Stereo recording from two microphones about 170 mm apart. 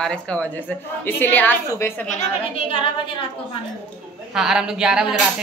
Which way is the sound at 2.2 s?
30° left (ahead or behind).